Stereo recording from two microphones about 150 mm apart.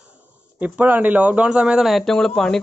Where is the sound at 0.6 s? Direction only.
10° right (ahead or behind).